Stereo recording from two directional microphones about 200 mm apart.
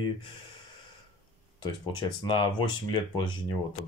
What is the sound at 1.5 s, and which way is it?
Speech, 25° left (ahead or behind).